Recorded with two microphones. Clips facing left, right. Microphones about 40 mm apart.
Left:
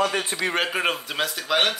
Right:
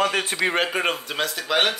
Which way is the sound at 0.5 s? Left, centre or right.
Centre.